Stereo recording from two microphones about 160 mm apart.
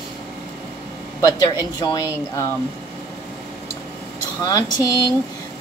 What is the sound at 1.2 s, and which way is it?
A woman's voice, 25° left (ahead or behind).